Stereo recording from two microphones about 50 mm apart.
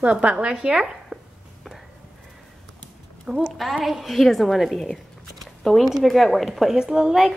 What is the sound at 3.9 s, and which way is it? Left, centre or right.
A woman's voice, centre.